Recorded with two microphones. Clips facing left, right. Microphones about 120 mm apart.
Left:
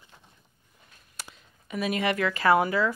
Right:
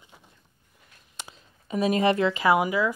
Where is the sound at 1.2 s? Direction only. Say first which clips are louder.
Right 2 dB; 25° right (ahead or behind).